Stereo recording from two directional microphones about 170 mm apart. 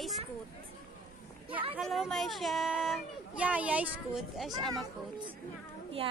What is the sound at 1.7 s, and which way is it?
Speech, centre (ahead or behind).